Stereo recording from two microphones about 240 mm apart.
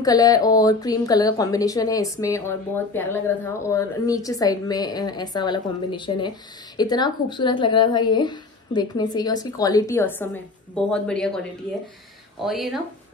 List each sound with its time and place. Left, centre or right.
0.0 s speech: centre
12.4 s speech: centre